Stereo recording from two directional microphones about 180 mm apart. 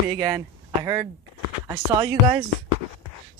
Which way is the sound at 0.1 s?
20° right (ahead or behind).